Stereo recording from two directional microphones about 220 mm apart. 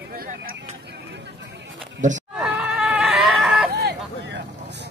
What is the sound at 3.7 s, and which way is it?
Vehicle, 50° right (ahead or behind).